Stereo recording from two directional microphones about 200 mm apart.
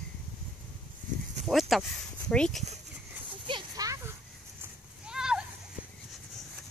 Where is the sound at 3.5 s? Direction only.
20° right (ahead or behind).